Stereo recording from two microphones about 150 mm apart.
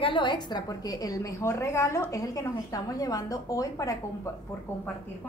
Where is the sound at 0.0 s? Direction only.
30° left (ahead or behind).